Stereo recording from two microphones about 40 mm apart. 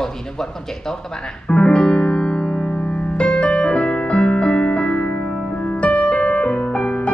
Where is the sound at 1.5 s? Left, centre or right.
Left.